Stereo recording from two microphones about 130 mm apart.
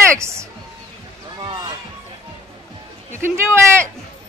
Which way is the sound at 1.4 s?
40° right (ahead or behind).